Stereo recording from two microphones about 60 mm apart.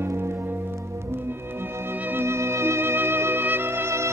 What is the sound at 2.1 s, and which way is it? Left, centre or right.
Music, right.